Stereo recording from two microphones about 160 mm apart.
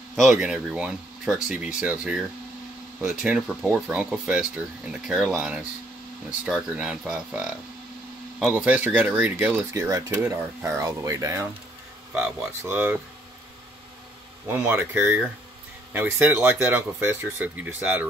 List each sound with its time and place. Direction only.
0.1 s speech: centre (ahead or behind)
6.4 s speech: 5° right (ahead or behind)
9.8 s speech: 20° right (ahead or behind)
14.5 s speech: 15° right (ahead or behind)